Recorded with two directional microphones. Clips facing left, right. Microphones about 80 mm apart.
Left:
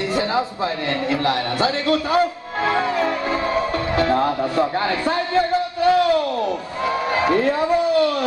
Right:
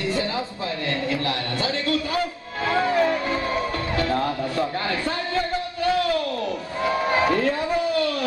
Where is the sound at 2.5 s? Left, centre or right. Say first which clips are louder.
Left 1 dB; left.